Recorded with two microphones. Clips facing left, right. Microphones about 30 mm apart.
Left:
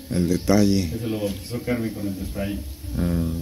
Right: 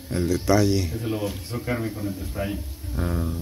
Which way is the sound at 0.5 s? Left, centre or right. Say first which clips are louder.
Left 1 dB; left.